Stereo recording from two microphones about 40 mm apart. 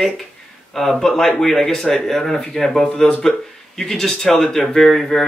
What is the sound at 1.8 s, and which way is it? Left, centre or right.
Speech, centre.